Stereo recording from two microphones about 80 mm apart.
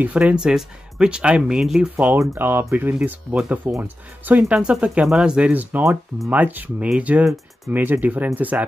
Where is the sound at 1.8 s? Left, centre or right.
Right.